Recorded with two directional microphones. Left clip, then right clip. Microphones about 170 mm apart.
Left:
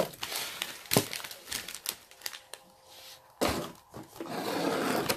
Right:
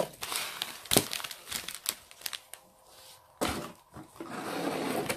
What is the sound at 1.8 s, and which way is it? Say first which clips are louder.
Crumpling: right 4 dB; 25° right (ahead or behind).